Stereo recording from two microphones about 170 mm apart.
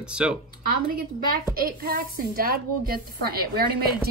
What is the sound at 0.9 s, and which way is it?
A woman's voice, 60° right (ahead or behind).